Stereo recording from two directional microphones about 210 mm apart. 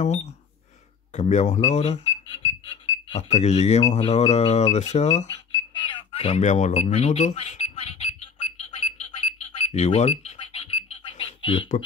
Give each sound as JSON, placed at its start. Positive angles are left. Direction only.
{"t": 0.0, "sound": "speech", "side_deg": 35}
{"t": 5.8, "sound": "cash register", "side_deg": 25}